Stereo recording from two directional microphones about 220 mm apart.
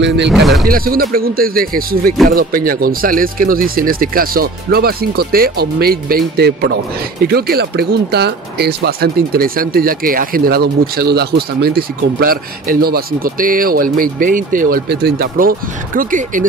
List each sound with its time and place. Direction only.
0.0 s speech: 50° right (ahead or behind)
0.3 s speech: centre (ahead or behind)
0.7 s speech: 40° right (ahead or behind)